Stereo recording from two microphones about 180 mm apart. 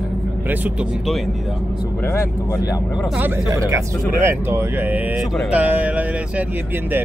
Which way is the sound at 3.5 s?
15° right (ahead or behind).